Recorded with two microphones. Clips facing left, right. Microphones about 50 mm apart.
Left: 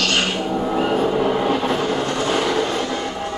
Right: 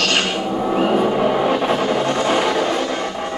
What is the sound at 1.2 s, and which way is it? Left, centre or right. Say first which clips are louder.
Vehicle: right 2 dB; right.